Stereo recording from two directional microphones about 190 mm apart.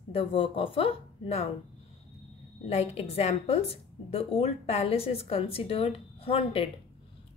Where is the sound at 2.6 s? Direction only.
35° left (ahead or behind).